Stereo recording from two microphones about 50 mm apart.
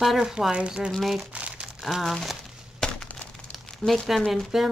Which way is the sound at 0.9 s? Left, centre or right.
Centre.